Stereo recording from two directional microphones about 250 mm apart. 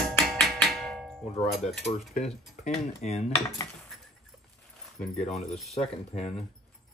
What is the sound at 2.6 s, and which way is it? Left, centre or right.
Speech, left.